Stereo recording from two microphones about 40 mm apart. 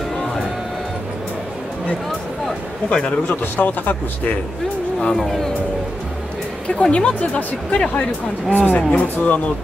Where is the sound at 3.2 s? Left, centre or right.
Left.